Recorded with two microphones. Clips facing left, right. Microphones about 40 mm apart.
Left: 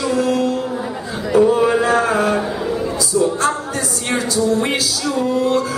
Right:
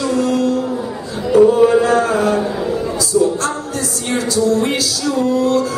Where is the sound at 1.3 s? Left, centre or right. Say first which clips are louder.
Right 3 dB; centre.